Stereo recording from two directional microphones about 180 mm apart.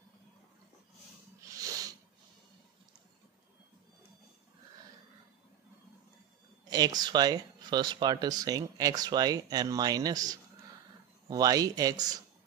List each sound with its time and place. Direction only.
1.5 s sneeze: 20° right (ahead or behind)
7.0 s speech: 25° right (ahead or behind)